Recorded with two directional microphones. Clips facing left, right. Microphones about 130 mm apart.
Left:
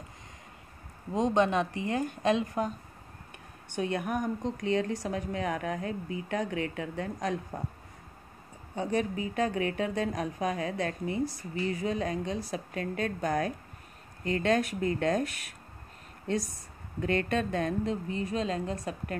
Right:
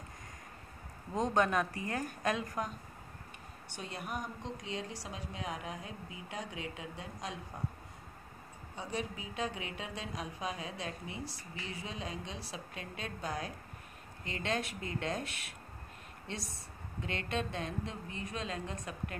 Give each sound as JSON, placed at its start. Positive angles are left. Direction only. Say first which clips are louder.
{"t": 1.1, "sound": "a woman's voice", "louder": "left 5 dB", "side_deg": 20}
{"t": 3.7, "sound": "a woman's voice", "louder": "left 11 dB", "side_deg": 55}
{"t": 8.7, "sound": "speech", "louder": "left 10 dB", "side_deg": 55}
{"t": 17.0, "sound": "speech", "louder": "left 9 dB", "side_deg": 50}
{"t": 18.1, "sound": "a woman's voice", "louder": "left 9 dB", "side_deg": 35}